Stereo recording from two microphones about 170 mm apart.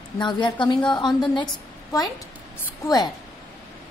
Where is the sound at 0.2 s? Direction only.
25° left (ahead or behind).